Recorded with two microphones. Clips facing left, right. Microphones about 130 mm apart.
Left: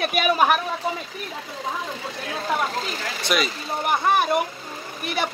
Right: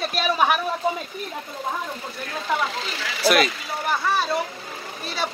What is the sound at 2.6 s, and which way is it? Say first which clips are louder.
Speech: left 1 dB; 40° left (ahead or behind).